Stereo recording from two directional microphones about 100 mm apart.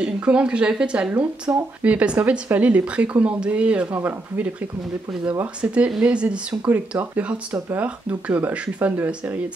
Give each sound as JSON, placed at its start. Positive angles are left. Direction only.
{"t": 0.0, "sound": "speech", "side_deg": -10}
{"t": 5.6, "sound": "speech", "side_deg": -10}